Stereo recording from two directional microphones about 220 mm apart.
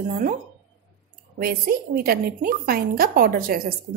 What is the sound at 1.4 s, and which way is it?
A woman's voice, 40° right (ahead or behind).